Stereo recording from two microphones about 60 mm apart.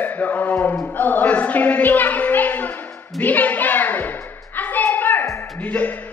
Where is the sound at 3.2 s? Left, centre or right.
Left.